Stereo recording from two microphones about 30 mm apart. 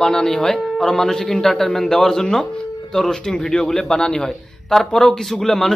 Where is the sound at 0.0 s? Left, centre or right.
Left.